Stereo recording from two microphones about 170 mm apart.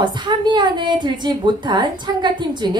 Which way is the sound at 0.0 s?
25° right (ahead or behind).